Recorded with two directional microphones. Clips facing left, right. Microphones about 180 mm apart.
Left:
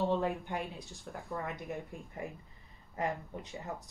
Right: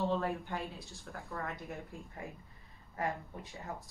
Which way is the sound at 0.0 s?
15° left (ahead or behind).